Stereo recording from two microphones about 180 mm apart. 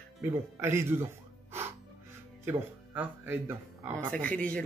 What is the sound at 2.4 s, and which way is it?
Speech, 10° right (ahead or behind).